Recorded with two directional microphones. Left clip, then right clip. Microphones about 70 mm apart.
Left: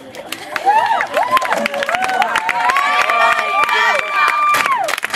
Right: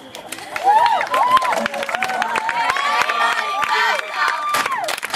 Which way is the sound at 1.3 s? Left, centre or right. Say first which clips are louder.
Left 1 dB; left.